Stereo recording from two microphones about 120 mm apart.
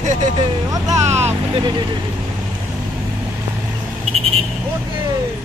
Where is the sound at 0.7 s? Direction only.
25° right (ahead or behind).